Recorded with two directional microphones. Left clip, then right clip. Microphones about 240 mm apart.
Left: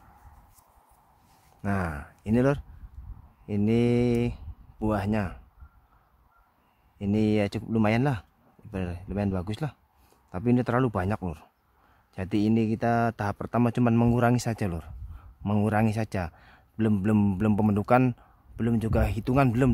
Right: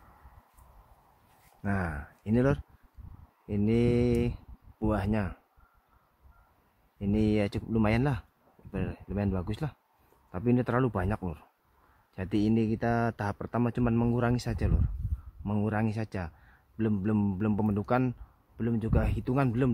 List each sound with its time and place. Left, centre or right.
1.6 s speech: left
7.0 s a man's voice: left